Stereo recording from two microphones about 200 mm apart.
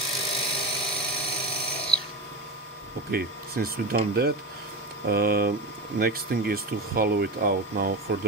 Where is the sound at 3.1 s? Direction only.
50° right (ahead or behind).